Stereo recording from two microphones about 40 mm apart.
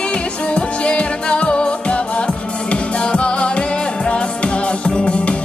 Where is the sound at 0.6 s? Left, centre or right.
Left.